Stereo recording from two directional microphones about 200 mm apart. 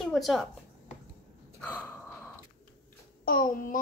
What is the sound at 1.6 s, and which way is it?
Gasp, 5° left (ahead or behind).